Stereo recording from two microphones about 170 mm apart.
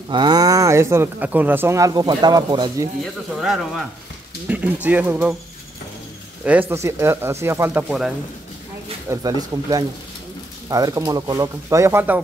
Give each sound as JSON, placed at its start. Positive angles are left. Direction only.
{"t": 0.1, "sound": "speech", "side_deg": -25}
{"t": 3.3, "sound": "speech", "side_deg": 0}
{"t": 6.7, "sound": "speech", "side_deg": -15}
{"t": 9.1, "sound": "speech", "side_deg": -20}